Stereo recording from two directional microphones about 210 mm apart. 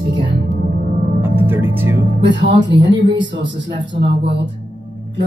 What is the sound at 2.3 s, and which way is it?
Speech, 55° right (ahead or behind).